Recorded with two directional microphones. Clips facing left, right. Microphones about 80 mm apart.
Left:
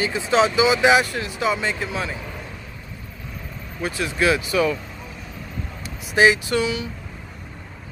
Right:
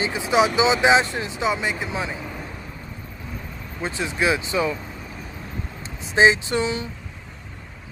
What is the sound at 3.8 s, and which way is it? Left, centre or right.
Speech, right.